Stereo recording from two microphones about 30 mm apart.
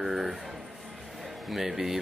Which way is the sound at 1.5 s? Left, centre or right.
Centre.